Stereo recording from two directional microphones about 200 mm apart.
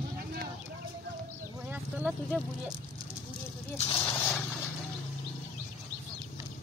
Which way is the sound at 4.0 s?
10° left (ahead or behind).